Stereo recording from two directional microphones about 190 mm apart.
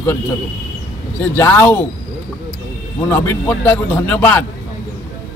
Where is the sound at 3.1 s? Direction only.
10° left (ahead or behind).